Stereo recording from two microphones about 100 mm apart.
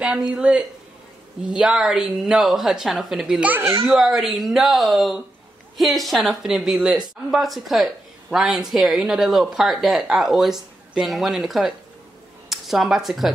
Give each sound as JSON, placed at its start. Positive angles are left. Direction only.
{"t": 0.0, "sound": "speech", "side_deg": -10}